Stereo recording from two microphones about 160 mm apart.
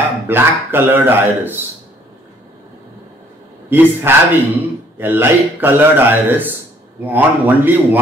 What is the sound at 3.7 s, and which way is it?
Speech, 15° right (ahead or behind).